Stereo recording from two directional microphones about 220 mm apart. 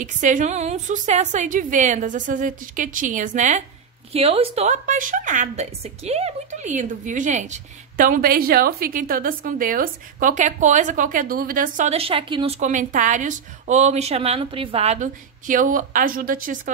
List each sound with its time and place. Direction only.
0.0 s a woman's voice: 35° right (ahead or behind)